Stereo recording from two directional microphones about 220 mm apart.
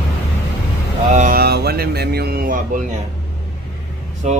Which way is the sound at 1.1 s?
40° right (ahead or behind).